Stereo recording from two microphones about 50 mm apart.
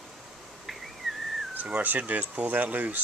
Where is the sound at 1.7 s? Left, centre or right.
Right.